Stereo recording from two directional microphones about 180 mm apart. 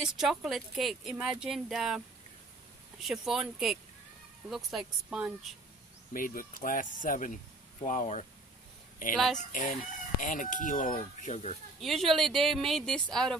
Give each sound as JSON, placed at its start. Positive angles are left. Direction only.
{"t": 0.2, "sound": "speech", "side_deg": 0}
{"t": 6.1, "sound": "speech", "side_deg": 50}
{"t": 9.1, "sound": "speech", "side_deg": 5}
{"t": 9.4, "sound": "speech", "side_deg": 45}
{"t": 11.8, "sound": "speech", "side_deg": 0}